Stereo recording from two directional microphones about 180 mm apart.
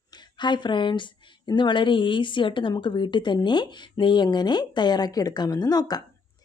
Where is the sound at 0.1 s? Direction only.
25° left (ahead or behind).